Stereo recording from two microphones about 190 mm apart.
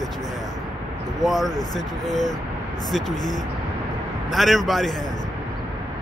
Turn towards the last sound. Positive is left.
turn(degrees=0)  # may be behind; listen again after turning